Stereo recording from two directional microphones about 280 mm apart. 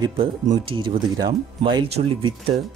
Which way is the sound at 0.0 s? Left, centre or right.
Centre.